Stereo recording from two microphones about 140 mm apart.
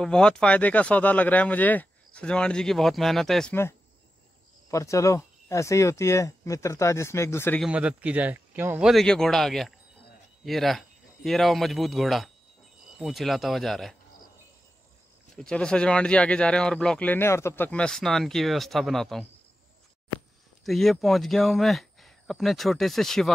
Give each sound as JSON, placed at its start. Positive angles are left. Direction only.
{"t": 0.0, "sound": "speech", "side_deg": 5}
{"t": 4.6, "sound": "speech", "side_deg": 25}
{"t": 7.6, "sound": "a man's voice", "side_deg": -10}
{"t": 8.8, "sound": "speech", "side_deg": 5}
{"t": 15.3, "sound": "speech", "side_deg": 5}
{"t": 20.6, "sound": "speech", "side_deg": 0}